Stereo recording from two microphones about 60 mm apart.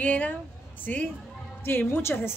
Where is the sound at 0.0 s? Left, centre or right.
Left.